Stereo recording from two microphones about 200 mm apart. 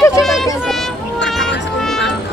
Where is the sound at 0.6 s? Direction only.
Centre (ahead or behind).